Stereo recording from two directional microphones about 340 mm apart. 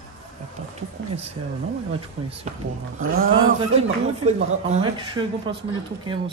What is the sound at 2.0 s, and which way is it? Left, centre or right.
Speech, centre.